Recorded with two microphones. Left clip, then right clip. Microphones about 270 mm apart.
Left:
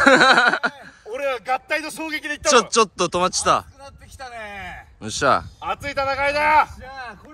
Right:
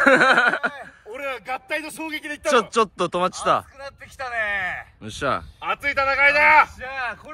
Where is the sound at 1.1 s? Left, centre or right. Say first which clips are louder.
Left 6 dB; centre.